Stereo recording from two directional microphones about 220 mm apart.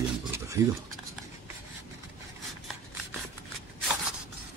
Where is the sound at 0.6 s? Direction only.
10° right (ahead or behind).